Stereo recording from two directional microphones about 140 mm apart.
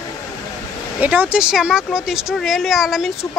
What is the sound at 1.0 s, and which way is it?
Speech, 10° right (ahead or behind).